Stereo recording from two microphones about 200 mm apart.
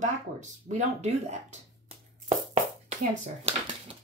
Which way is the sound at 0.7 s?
35° right (ahead or behind).